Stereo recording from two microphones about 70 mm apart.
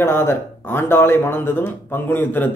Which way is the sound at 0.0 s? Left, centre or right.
Left.